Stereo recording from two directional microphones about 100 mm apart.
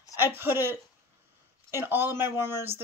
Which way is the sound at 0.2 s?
20° right (ahead or behind).